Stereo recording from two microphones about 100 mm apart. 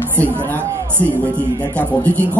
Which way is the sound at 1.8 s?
15° left (ahead or behind).